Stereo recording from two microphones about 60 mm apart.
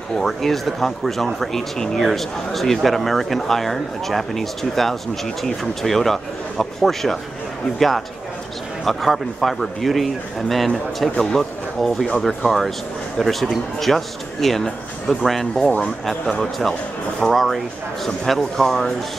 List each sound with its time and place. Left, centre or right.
0.2 s speech: centre
8.8 s speech: centre